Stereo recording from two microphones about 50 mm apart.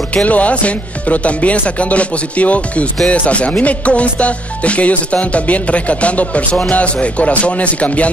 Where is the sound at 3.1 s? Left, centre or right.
Left.